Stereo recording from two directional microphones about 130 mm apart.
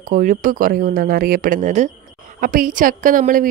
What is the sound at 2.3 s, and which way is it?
Speech, 90° right.